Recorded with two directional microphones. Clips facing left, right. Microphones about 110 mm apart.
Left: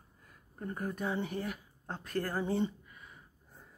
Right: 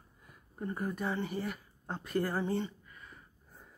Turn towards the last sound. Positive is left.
turn(degrees=5)  # may be behind; listen again after turning